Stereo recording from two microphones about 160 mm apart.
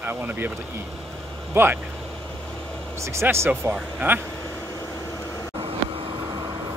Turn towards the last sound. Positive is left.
turn(degrees=-35)  # may be behind; listen again after turning